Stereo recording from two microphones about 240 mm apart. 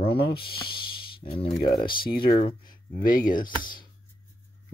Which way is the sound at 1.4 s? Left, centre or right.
Left.